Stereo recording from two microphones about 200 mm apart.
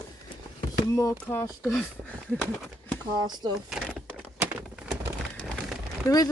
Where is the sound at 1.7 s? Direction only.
5° left (ahead or behind).